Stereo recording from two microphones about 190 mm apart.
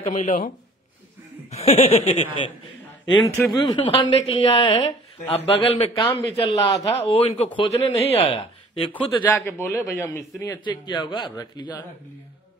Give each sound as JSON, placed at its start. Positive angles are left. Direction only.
{"t": 0.0, "sound": "speech", "side_deg": 40}
{"t": 1.5, "sound": "speech", "side_deg": 35}
{"t": 3.5, "sound": "a man's voice", "side_deg": 25}
{"t": 6.0, "sound": "a man's voice", "side_deg": 20}
{"t": 8.9, "sound": "a man's voice", "side_deg": 10}